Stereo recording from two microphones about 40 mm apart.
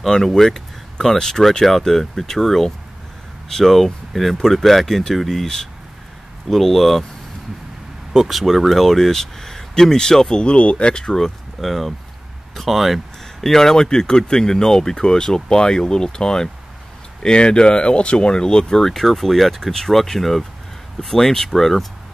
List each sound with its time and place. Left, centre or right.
0.0 s speech: centre
8.1 s speech: centre; by 11.1 s left
11.1 s speech: centre
13.4 s speech: centre